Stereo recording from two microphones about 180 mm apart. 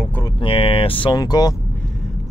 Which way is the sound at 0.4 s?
30° left (ahead or behind).